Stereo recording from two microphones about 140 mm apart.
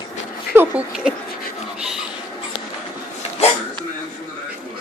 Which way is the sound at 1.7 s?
5° right (ahead or behind).